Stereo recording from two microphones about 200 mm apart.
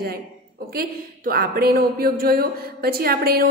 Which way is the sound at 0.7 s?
50° right (ahead or behind).